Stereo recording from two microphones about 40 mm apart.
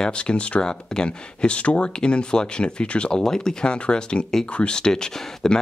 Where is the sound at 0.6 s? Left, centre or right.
Centre.